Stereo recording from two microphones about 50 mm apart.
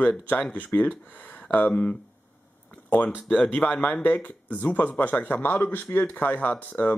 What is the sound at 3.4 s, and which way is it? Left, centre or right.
Speech, left.